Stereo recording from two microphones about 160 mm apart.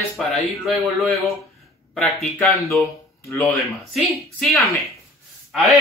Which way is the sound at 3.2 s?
20° left (ahead or behind).